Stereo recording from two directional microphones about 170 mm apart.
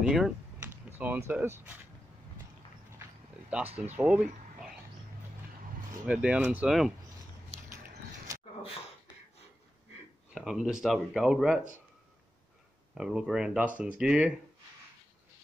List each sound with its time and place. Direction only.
0.0 s typing: 5° right (ahead or behind)
0.8 s speech: 10° right (ahead or behind)
3.5 s speech: 5° right (ahead or behind)
6.0 s speech: 5° right (ahead or behind)
10.3 s speech: centre (ahead or behind)
12.9 s speech: 5° right (ahead or behind)